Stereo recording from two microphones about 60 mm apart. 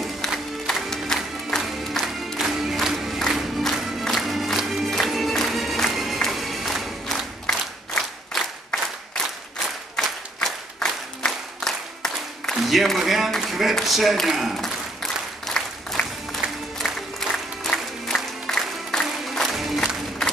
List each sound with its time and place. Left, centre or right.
0.0 s music: centre
9.9 s applause: centre
11.2 s a sound: centre
13.7 s speech: centre
15.4 s applause: centre
16.3 s music: centre